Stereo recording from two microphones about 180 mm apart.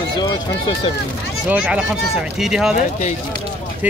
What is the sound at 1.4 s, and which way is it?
Speech, 5° right (ahead or behind).